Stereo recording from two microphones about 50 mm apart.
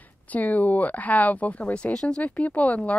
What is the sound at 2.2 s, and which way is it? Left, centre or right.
Speech, left.